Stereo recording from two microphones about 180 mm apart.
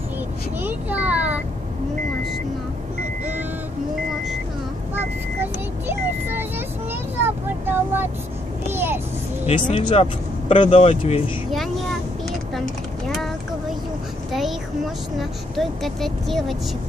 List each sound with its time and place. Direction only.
0.6 s a sound: 10° right (ahead or behind)
4.9 s vehicle: 10° right (ahead or behind)
9.7 s speech: 30° left (ahead or behind)
15.1 s speech: centre (ahead or behind)